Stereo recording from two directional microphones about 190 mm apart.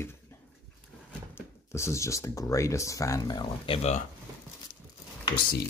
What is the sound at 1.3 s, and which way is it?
Speech, 15° left (ahead or behind).